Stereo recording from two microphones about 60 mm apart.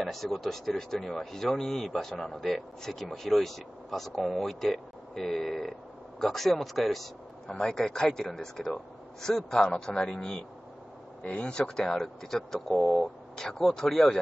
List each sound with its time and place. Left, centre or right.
0.0 s speech: centre